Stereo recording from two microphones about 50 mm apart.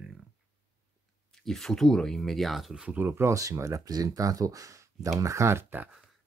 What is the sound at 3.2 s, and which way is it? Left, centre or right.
Speech, right.